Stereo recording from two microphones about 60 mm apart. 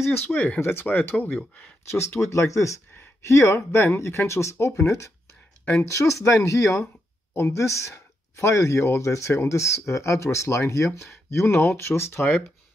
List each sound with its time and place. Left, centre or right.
0.3 s speech: left
0.6 s speech: left
1.9 s speech: left
3.5 s speech: left